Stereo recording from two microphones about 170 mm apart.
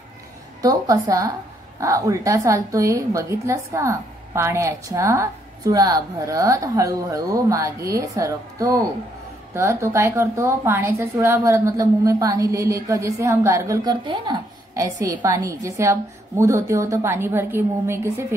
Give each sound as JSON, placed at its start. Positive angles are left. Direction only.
{"t": 0.6, "sound": "a woman's voice", "side_deg": -20}